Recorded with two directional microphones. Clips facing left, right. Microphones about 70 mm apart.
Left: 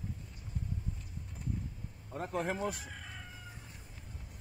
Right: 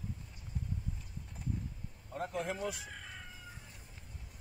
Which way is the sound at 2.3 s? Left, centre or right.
Left.